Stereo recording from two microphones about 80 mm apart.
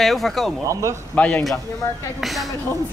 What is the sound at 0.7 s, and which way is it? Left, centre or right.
Speech, right.